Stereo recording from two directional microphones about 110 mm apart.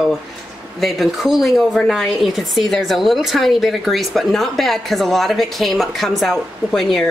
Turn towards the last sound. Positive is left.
turn(degrees=0)  # may be behind; listen again after turning